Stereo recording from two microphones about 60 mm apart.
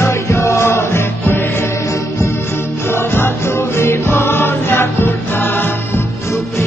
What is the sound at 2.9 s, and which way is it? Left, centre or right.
Music, left.